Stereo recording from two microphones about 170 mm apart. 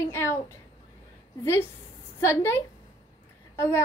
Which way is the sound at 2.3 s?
15° left (ahead or behind).